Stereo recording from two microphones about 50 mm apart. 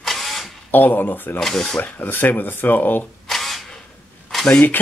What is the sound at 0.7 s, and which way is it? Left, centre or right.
Speech, left.